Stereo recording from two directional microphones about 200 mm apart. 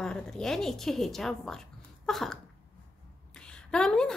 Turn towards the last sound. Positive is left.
turn(degrees=5)  # may be behind; listen again after turning